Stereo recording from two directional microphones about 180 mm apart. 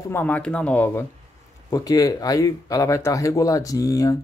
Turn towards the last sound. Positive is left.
turn(degrees=20)  # may be behind; listen again after turning